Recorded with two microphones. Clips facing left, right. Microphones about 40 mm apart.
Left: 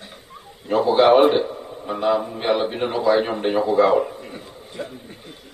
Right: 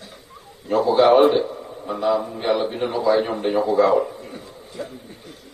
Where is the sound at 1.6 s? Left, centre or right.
Centre.